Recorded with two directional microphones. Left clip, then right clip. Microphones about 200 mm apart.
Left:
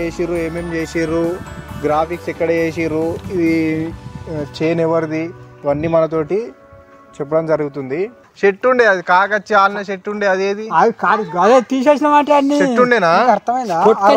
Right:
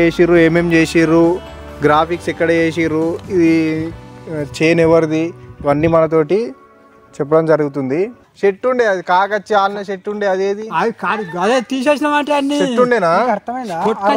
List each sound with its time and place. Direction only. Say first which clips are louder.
0.0 s speech: right 9 dB; 45° right (ahead or behind)
4.6 s speech: right 5 dB; 50° right (ahead or behind)
8.4 s speech: left 2 dB; 5° left (ahead or behind)
9.0 s speech: left 1 dB; 10° right (ahead or behind)
11.3 s speech: left 4 dB; 20° right (ahead or behind)
12.7 s speech: even; centre (ahead or behind)
13.3 s speech: left 5 dB; 35° left (ahead or behind)